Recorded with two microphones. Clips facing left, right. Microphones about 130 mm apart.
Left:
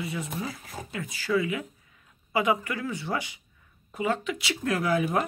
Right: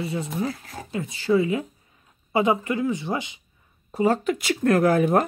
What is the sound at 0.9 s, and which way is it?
Speech, 25° right (ahead or behind).